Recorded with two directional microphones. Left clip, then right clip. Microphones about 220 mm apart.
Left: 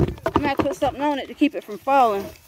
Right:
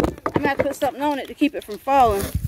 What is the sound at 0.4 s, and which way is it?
Speech, centre (ahead or behind).